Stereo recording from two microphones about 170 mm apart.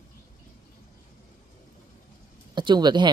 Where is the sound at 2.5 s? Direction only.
25° right (ahead or behind).